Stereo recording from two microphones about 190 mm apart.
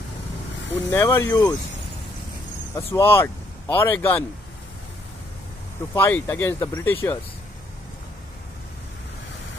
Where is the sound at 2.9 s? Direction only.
15° left (ahead or behind).